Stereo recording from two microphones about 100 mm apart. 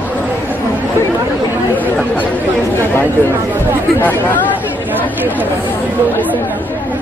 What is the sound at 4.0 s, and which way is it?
Speech, 20° left (ahead or behind).